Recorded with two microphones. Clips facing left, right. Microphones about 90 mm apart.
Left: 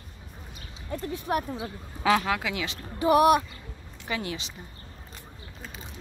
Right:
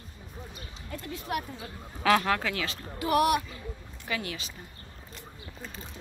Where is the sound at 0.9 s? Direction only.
35° left (ahead or behind).